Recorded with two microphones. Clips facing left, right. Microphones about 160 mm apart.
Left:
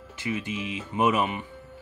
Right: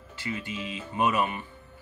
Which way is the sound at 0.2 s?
15° left (ahead or behind).